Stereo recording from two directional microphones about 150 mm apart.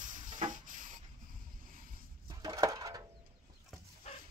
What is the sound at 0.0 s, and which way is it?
Wood, 60° right (ahead or behind).